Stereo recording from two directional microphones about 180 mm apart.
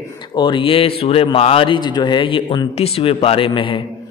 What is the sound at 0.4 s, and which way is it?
A man's voice, 25° left (ahead or behind).